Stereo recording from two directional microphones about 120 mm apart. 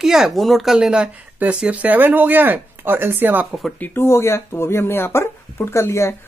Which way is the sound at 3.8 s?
20° left (ahead or behind).